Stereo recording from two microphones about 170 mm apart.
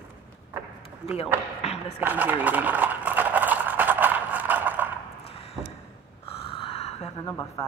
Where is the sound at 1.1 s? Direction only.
40° left (ahead or behind).